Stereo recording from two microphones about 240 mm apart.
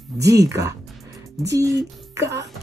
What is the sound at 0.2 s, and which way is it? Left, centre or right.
Speech, centre.